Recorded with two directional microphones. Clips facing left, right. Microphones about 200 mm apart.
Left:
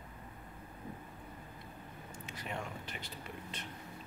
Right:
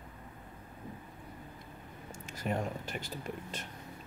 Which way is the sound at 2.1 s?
45° right (ahead or behind).